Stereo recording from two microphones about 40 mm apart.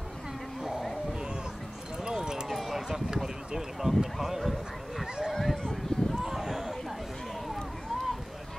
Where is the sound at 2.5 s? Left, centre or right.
Centre.